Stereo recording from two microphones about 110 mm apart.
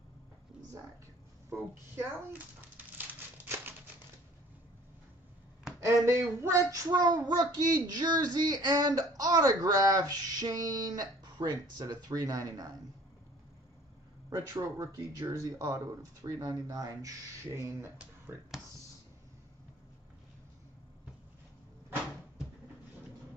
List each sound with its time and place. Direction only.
1.5 s speech: 20° right (ahead or behind)
3.4 s typewriter: 20° right (ahead or behind)
5.8 s speech: 25° right (ahead or behind)
14.3 s speech: 25° right (ahead or behind)